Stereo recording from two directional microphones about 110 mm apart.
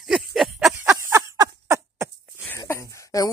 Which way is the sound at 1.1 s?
25° right (ahead or behind).